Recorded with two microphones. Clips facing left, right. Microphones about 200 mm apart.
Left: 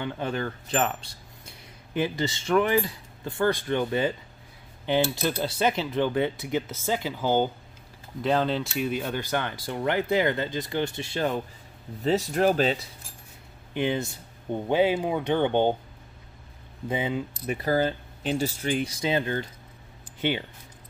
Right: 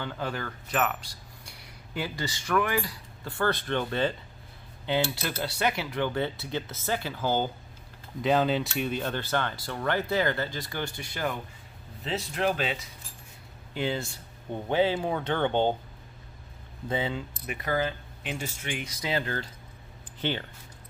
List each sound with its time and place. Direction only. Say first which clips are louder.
0.0 s speech: left 4 dB; 20° left (ahead or behind)
8.2 s speech: even; 5° right (ahead or behind); by 11.3 s 25° left (ahead or behind)
12.0 s speech: left 7 dB; 45° left (ahead or behind)
13.7 s speech: left 4 dB; 20° left (ahead or behind)
16.8 s speech: left 2 dB; 15° left (ahead or behind)
17.5 s speech: left 5 dB; 35° left (ahead or behind); by 20.4 s 10° left (ahead or behind)